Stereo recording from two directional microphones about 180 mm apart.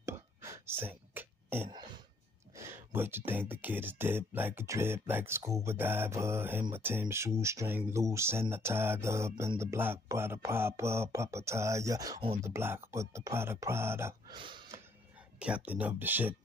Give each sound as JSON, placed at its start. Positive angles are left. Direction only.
{"t": 0.0, "sound": "whispering", "side_deg": -15}
{"t": 2.5, "sound": "speech", "side_deg": -15}
{"t": 14.3, "sound": "a sound", "side_deg": -25}
{"t": 15.3, "sound": "speech", "side_deg": -5}